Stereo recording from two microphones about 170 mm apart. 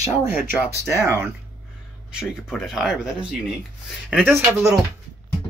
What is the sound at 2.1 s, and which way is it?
Speech, centre (ahead or behind).